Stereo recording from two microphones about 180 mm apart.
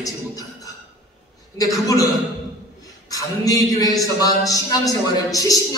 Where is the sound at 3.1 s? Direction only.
20° left (ahead or behind).